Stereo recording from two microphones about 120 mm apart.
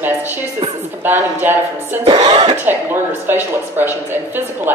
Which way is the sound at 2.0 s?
40° right (ahead or behind).